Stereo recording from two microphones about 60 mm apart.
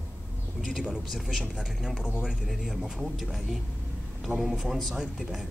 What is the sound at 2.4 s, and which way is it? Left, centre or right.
A man's voice, centre.